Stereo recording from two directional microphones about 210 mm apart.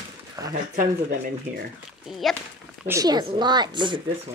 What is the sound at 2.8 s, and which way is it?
Speech, 15° right (ahead or behind).